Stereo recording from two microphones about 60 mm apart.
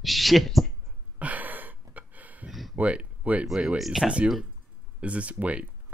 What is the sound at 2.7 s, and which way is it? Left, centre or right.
Speech, right.